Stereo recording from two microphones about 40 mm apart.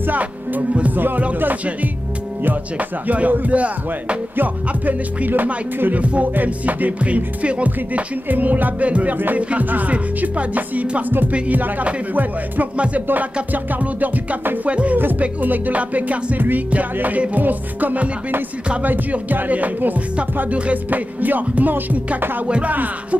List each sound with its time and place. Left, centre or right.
0.0 s music: right
0.9 s speech: right
2.4 s music: right
4.4 s speech: right
7.4 s music: right
9.7 s music: right
11.0 s speech: right
12.7 s music: right
13.1 s speech: right
15.1 s music: right
16.3 s speech: right
16.7 s music: right
18.8 s speech: right